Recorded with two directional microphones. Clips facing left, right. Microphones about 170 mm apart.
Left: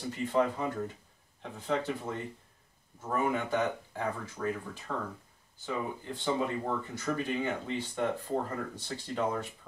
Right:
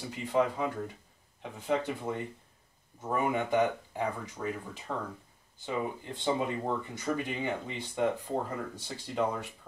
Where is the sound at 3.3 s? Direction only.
15° right (ahead or behind).